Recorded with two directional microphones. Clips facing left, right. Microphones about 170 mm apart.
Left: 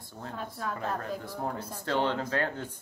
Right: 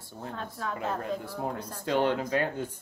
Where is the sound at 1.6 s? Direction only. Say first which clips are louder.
Even; 10° left (ahead or behind).